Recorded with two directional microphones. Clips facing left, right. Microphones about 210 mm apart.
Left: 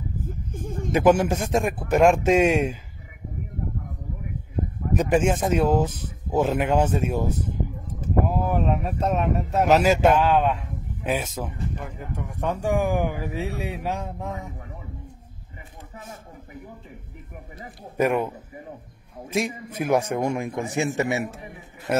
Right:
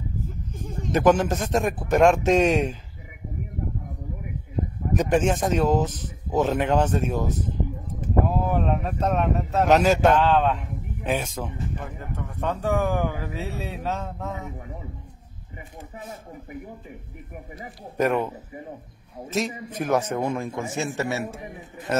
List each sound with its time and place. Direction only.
0.2 s a sound: 50° left (ahead or behind)
0.9 s speech: 10° left (ahead or behind)
4.9 s speech: 5° left (ahead or behind)
17.9 s speech: 10° left (ahead or behind)